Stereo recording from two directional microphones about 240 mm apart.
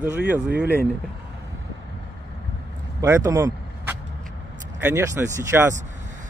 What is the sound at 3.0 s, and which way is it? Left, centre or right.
Vehicle, centre.